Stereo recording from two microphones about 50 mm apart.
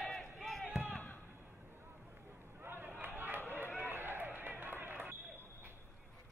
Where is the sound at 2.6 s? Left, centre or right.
Right.